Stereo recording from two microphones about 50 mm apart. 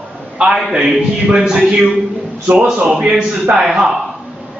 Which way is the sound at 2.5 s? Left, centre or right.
Right.